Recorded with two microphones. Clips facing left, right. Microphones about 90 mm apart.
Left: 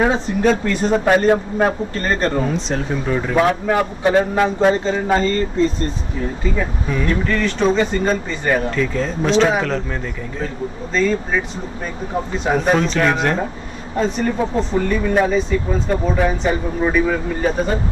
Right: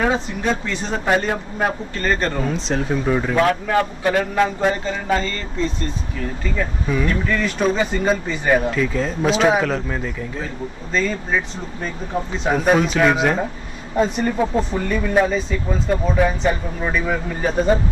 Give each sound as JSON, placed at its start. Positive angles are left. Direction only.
{"t": 0.4, "sound": "speech", "side_deg": 50}
{"t": 2.4, "sound": "speech", "side_deg": 0}
{"t": 3.3, "sound": "a man's voice", "side_deg": 15}
{"t": 6.9, "sound": "speech", "side_deg": -5}